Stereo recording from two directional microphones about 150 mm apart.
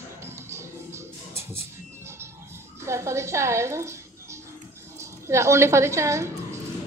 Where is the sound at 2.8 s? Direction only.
20° right (ahead or behind).